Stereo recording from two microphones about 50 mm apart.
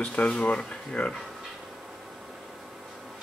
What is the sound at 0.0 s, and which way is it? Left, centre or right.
Speech, left.